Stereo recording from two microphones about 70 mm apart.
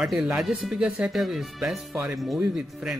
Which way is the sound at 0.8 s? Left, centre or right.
Centre.